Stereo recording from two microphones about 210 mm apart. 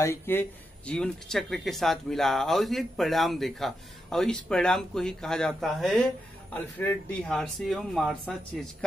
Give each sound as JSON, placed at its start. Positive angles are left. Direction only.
{"t": 0.0, "sound": "speech", "side_deg": 10}